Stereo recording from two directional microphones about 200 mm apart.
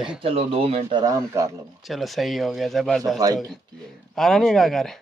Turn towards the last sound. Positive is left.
turn(degrees=0)  # may be behind; listen again after turning